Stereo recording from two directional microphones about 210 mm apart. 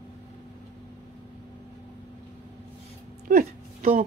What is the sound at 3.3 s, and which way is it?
Speech, 45° right (ahead or behind).